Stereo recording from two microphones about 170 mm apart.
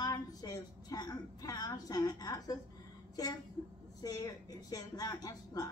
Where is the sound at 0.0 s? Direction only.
20° left (ahead or behind).